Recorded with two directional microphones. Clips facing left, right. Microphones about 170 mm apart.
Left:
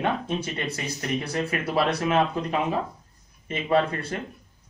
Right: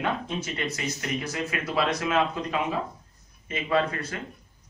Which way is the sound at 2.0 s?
35° left (ahead or behind).